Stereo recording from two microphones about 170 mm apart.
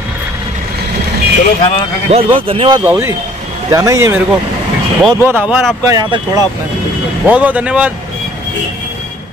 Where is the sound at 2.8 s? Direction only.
10° right (ahead or behind).